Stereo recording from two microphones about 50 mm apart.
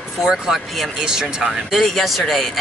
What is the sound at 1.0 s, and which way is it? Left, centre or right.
Speech, centre.